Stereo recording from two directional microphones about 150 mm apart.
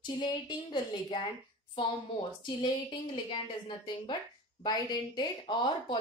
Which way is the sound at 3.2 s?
35° left (ahead or behind).